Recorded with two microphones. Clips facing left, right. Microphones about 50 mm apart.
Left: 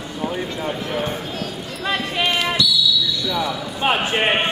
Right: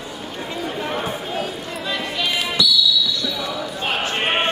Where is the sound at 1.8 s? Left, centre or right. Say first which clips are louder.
Left 4 dB; left.